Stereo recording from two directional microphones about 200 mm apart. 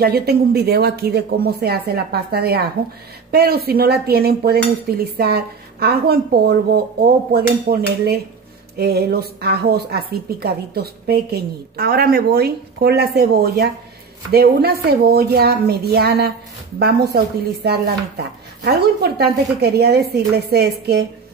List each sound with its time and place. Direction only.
0.0 s dishes: 50° right (ahead or behind)